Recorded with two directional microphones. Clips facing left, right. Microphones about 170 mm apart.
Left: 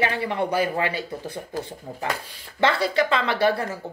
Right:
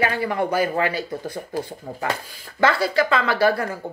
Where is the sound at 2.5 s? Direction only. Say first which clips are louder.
Right 2 dB; 30° left (ahead or behind).